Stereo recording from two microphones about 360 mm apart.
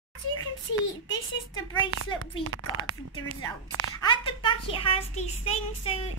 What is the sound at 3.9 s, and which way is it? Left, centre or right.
Speech, centre.